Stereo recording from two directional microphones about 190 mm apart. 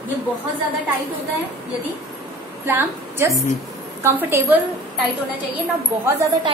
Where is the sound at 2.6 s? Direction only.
15° right (ahead or behind).